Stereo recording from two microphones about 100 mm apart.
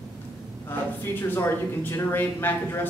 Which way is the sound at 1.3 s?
20° left (ahead or behind).